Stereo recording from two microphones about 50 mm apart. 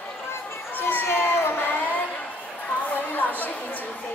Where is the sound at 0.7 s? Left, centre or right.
Left.